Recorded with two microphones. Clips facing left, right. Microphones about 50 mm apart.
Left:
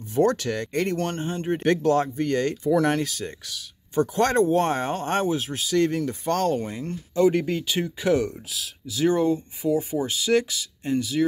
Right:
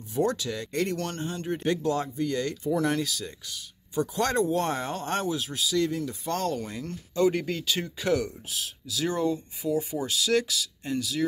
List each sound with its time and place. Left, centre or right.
0.1 s speech: left
0.7 s speech: left
1.6 s speech: left
5.4 s speech: left
6.5 s speech: left
8.8 s speech: left